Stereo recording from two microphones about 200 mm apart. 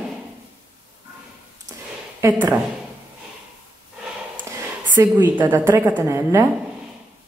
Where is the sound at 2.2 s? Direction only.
15° right (ahead or behind).